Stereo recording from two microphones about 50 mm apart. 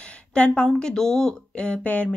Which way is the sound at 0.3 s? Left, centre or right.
Centre.